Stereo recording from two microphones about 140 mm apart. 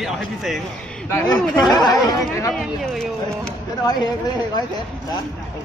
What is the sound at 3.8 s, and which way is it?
Speech, 30° left (ahead or behind).